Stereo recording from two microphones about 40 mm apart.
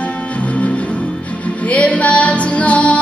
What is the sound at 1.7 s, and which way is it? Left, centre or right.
Music, left.